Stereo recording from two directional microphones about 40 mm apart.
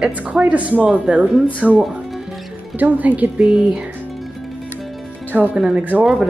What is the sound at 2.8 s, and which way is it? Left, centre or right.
Speech, right.